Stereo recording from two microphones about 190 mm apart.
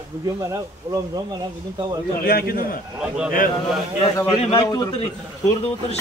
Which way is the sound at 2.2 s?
55° left (ahead or behind).